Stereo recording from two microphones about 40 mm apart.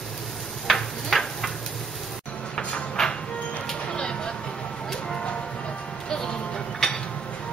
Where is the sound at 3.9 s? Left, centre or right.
Left.